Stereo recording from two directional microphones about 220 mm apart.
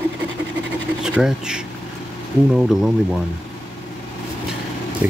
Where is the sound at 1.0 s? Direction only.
5° right (ahead or behind).